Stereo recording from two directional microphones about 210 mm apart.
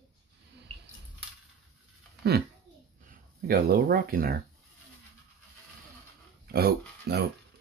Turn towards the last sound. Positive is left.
turn(degrees=-50)  # may be behind; listen again after turning